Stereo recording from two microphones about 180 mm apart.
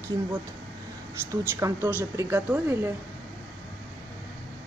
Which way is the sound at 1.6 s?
15° right (ahead or behind).